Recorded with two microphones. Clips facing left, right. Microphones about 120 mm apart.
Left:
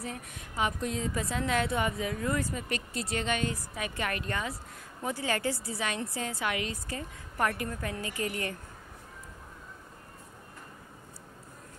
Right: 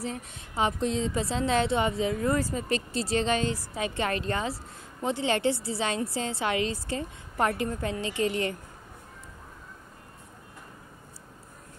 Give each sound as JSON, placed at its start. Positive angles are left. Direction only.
{"t": 0.0, "sound": "a woman's voice", "side_deg": -30}